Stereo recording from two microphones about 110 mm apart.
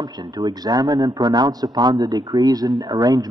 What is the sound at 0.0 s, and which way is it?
Speech, 40° right (ahead or behind).